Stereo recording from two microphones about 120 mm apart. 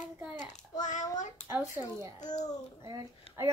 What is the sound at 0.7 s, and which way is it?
Child singing, 90° left.